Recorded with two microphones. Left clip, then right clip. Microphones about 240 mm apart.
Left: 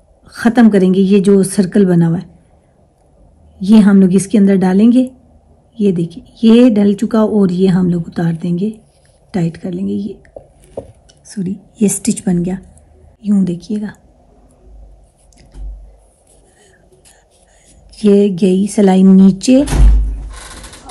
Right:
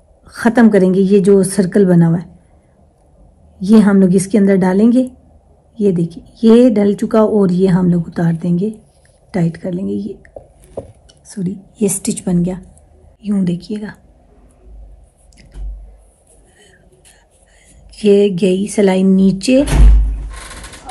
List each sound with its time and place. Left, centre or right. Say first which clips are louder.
0.2 s speech: even; centre
3.5 s speech: left 1 dB; centre
13.2 s speech: left 3 dB; left
17.9 s speech: right 1 dB; left